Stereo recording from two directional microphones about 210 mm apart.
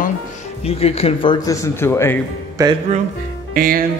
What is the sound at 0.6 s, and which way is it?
A man's voice, 30° left (ahead or behind).